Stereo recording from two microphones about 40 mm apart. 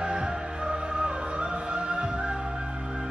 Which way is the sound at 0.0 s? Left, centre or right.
Centre.